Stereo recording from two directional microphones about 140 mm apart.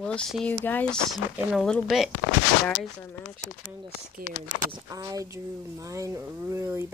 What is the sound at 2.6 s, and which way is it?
Speech, 15° left (ahead or behind).